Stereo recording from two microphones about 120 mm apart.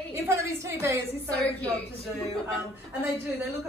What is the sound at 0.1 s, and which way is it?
Speech, 20° right (ahead or behind).